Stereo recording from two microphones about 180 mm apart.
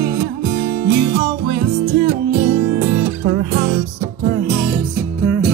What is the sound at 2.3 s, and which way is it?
Music, 45° right (ahead or behind).